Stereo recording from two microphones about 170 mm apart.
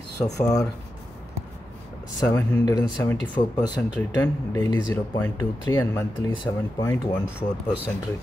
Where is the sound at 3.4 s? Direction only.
35° left (ahead or behind).